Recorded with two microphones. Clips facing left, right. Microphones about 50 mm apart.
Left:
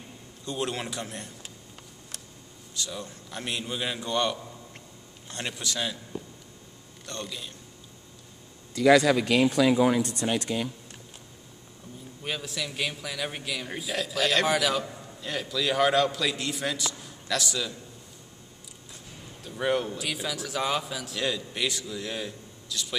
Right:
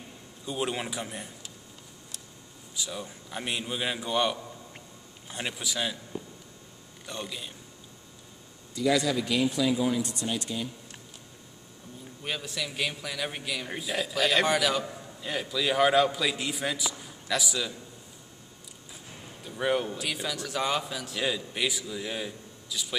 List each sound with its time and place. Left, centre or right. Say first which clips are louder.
0.5 s speech: even; centre
2.7 s a man's voice: left 1 dB; centre
8.7 s speech: left 6 dB; left
12.2 s a man's voice: left 1 dB; centre
19.4 s a man's voice: left 1 dB; centre